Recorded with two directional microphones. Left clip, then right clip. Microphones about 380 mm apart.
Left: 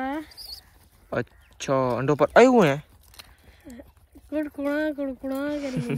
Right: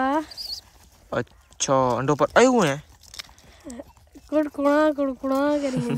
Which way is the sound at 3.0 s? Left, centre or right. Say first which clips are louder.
Right 8 dB; centre.